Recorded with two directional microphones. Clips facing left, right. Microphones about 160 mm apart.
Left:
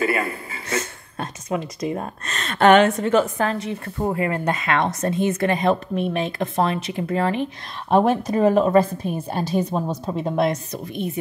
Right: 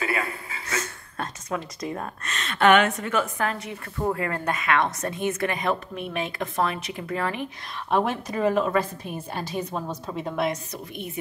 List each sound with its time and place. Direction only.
0.7 s speech: 20° left (ahead or behind)
2.2 s a woman's voice: 40° left (ahead or behind)